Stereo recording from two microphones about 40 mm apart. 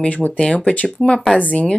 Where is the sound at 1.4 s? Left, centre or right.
Left.